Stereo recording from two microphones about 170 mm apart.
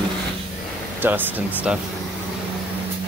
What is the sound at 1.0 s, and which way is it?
Speech, 10° right (ahead or behind).